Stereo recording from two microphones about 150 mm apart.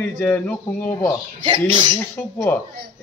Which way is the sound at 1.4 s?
30° right (ahead or behind).